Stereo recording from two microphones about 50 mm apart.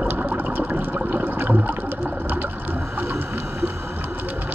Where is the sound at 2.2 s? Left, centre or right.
Right.